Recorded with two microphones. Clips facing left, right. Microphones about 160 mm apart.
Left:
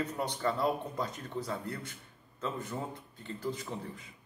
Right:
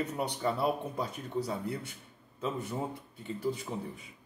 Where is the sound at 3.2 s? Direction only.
10° right (ahead or behind).